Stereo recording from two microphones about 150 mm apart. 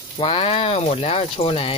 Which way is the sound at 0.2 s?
40° left (ahead or behind).